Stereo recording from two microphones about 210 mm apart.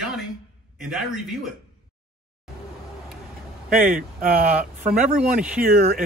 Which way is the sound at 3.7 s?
40° right (ahead or behind).